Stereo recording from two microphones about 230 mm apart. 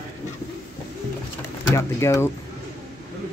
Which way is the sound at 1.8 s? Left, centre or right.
Centre.